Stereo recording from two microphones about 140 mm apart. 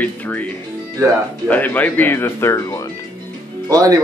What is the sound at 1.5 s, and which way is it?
Speech, 10° left (ahead or behind).